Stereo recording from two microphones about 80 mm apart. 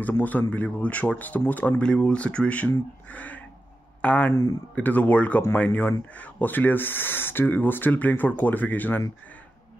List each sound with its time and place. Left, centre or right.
0.0 s speech: left
3.1 s a sound: centre
4.0 s speech: centre
4.3 s speech: left
4.7 s speech: centre